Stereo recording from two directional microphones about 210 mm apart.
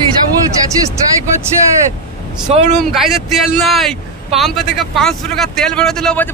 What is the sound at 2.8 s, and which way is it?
Speech, centre (ahead or behind).